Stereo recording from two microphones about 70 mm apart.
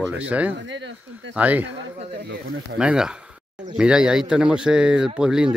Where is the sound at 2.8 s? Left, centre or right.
Centre.